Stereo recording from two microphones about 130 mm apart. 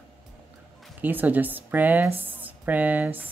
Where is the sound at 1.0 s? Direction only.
15° right (ahead or behind).